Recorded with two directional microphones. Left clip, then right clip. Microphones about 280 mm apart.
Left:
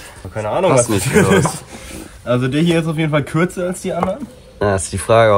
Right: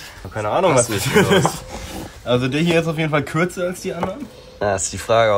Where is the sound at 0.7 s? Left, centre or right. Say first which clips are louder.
Left 3 dB; centre.